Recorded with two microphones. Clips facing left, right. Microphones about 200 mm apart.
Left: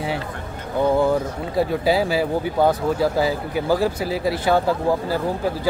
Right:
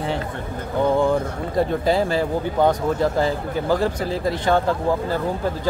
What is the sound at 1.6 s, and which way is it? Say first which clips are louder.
Speech: even; 5° left (ahead or behind).